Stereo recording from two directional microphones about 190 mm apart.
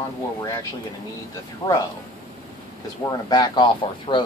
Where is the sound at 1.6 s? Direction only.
20° left (ahead or behind).